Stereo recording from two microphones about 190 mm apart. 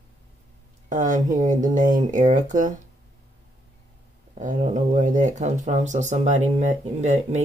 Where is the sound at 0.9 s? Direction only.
40° right (ahead or behind).